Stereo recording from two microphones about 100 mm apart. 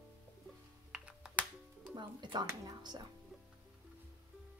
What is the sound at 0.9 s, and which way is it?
Music, 5° right (ahead or behind).